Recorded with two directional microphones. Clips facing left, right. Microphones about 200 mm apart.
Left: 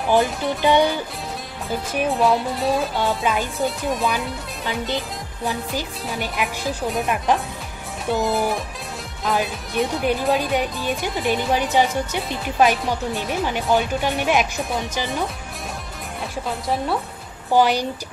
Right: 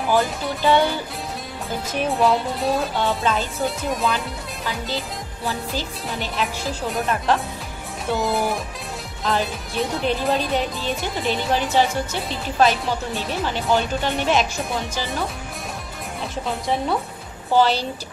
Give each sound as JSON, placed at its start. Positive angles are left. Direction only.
{"t": 0.1, "sound": "speech", "side_deg": 20}
{"t": 2.1, "sound": "music", "side_deg": 0}
{"t": 4.6, "sound": "music", "side_deg": 20}
{"t": 6.2, "sound": "speech", "side_deg": 15}
{"t": 8.1, "sound": "music", "side_deg": 0}
{"t": 9.2, "sound": "speech", "side_deg": 5}
{"t": 16.6, "sound": "music", "side_deg": 0}
{"t": 17.5, "sound": "speech", "side_deg": 15}